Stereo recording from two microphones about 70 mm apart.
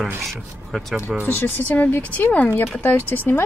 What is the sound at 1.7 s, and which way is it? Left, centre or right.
Speech, left.